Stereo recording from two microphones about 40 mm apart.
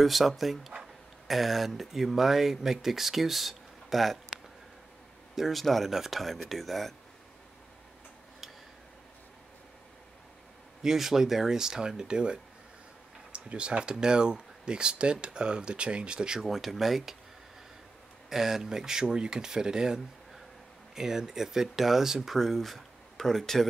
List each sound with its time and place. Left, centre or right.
0.0 s speech: centre
10.8 s speech: centre
16.3 s speech: centre
18.3 s speech: centre